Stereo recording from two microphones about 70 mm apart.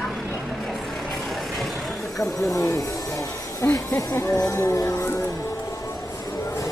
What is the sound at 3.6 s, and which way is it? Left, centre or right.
Speech, left.